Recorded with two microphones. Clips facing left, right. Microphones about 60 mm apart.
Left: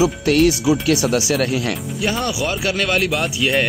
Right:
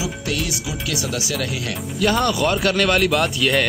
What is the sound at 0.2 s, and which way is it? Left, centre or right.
Speech, left.